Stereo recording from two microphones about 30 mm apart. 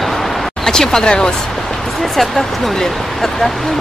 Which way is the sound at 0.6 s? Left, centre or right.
Centre.